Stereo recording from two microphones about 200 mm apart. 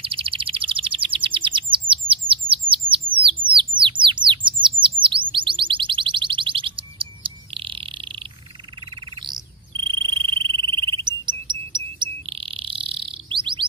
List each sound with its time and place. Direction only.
0.0 s bird: 25° right (ahead or behind)
8.9 s frog: 25° right (ahead or behind)